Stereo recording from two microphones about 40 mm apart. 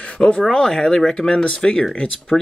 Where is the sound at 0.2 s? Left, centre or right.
Centre.